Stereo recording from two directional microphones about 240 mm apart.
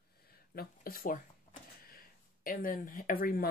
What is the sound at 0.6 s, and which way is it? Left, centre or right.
Speech, left.